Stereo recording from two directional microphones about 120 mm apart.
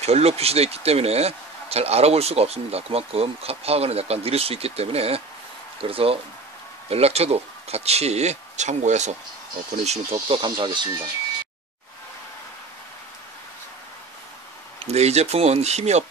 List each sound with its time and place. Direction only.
0.0 s speech: 60° right (ahead or behind); by 9.1 s 75° right (ahead or behind)
9.8 s speech: 50° right (ahead or behind)
14.9 s speech: 65° right (ahead or behind)